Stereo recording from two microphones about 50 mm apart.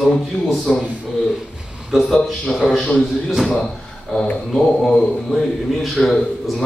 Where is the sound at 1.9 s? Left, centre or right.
Centre.